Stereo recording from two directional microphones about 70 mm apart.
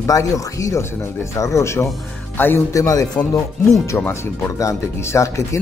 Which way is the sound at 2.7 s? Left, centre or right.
Left.